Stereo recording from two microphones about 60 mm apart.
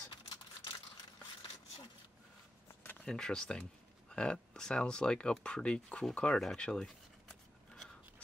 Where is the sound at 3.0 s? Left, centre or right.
Centre.